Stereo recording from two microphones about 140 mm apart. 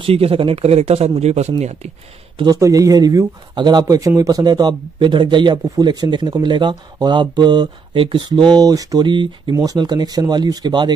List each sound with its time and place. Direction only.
0.0 s speech: 40° right (ahead or behind)
2.3 s speech: 30° right (ahead or behind)